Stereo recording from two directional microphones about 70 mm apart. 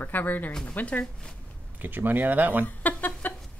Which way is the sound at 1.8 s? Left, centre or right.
Right.